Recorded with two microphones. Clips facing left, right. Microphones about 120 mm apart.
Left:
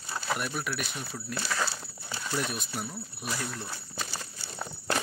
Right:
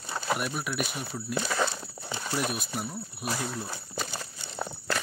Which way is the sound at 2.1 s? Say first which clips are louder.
Right 1 dB; 20° right (ahead or behind).